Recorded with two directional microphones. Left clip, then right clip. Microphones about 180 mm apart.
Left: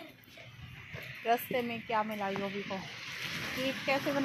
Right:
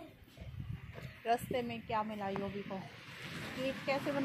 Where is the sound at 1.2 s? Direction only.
35° left (ahead or behind).